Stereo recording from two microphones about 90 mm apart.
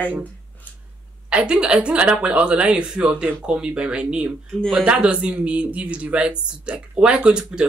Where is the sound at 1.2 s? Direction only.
10° right (ahead or behind).